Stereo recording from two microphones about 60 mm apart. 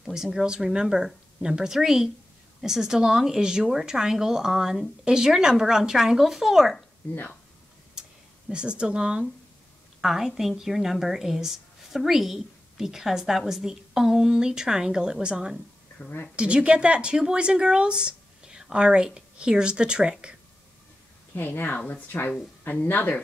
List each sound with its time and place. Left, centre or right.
0.0 s speech: centre
8.5 s a woman's voice: centre
16.0 s speech: left
16.3 s speech: centre
21.4 s speech: left